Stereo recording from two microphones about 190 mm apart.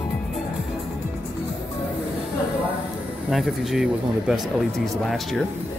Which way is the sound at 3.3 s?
Centre (ahead or behind).